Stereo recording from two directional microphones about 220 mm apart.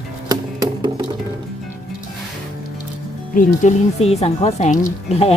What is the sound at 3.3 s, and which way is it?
Speech, 30° left (ahead or behind).